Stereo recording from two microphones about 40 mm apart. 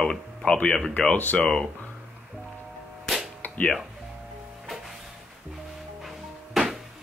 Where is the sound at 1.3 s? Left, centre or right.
Left.